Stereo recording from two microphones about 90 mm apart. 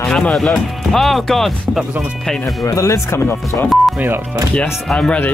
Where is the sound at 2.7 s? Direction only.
35° left (ahead or behind).